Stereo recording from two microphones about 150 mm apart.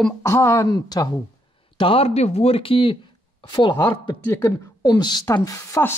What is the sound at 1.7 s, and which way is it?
Speech, 35° left (ahead or behind).